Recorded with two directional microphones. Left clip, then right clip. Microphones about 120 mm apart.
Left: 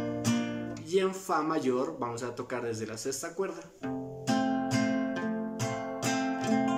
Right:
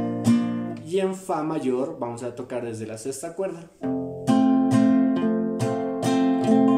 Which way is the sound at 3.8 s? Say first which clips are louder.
Right 9 dB; 45° right (ahead or behind).